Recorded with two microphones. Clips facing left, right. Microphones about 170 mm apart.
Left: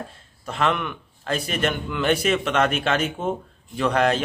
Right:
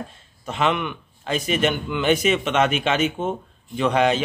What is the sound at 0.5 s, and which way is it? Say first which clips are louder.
A man's voice: right 1 dB; centre (ahead or behind).